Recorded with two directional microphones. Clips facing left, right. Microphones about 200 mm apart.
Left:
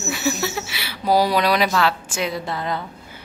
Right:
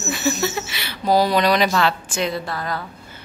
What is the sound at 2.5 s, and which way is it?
Speech, 20° left (ahead or behind).